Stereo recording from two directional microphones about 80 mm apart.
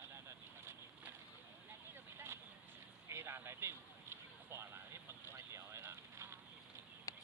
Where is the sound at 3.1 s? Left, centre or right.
Right.